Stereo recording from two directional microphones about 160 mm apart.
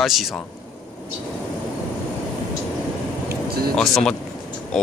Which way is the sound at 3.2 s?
75° right (ahead or behind).